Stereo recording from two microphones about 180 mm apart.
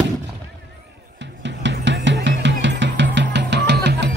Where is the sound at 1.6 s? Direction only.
80° right.